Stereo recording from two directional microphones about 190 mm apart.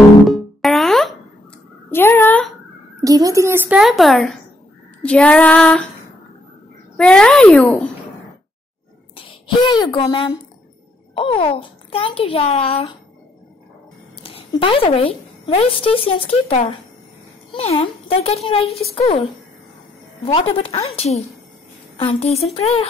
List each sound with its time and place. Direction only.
0.6 s music: centre (ahead or behind)
1.9 s a sound: 10° left (ahead or behind)
3.0 s a child's voice: 15° right (ahead or behind); by 4.4 s centre (ahead or behind)
5.0 s female singing: 5° left (ahead or behind)
7.0 s female singing: 5° left (ahead or behind)
9.1 s a child's voice: 25° left (ahead or behind)
14.2 s a woman's voice: 30° left (ahead or behind)
20.2 s speech: 30° left (ahead or behind)